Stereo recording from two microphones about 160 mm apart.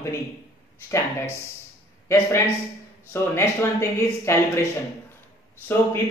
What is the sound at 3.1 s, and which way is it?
Speech, 15° left (ahead or behind).